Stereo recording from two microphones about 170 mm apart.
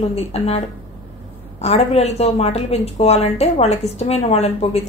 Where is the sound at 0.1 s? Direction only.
35° left (ahead or behind).